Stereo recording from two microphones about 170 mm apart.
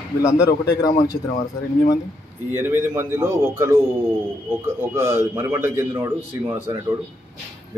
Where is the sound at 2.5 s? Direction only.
15° right (ahead or behind).